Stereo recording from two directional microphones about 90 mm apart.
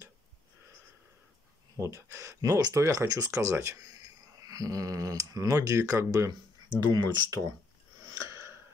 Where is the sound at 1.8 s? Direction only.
35° right (ahead or behind).